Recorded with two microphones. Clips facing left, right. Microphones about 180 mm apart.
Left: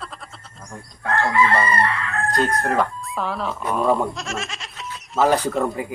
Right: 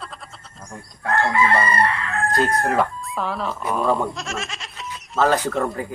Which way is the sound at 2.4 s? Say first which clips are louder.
Even; centre (ahead or behind).